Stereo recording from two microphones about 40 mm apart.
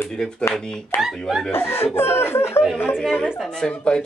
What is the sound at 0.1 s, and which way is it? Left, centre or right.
Speech, left.